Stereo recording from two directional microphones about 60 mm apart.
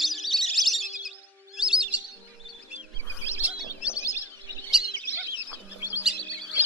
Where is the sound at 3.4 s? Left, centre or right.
Right.